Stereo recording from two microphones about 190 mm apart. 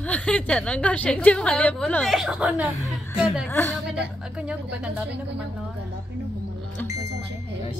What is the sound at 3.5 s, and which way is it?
Speech, 10° left (ahead or behind).